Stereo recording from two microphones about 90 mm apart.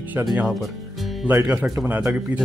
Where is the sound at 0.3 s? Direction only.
5° right (ahead or behind).